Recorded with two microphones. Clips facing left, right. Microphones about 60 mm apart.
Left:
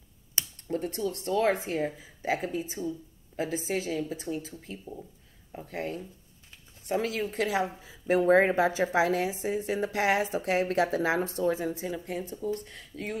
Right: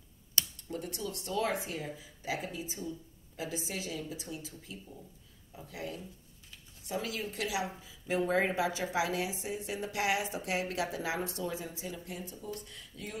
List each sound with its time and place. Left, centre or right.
0.6 s a woman's voice: left